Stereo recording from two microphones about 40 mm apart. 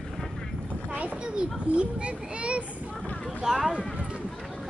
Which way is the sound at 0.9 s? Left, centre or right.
Right.